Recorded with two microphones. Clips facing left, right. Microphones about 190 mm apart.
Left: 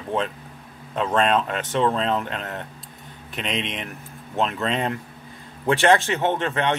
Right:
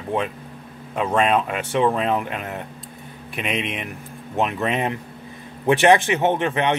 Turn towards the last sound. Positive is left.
turn(degrees=-15)  # may be behind; listen again after turning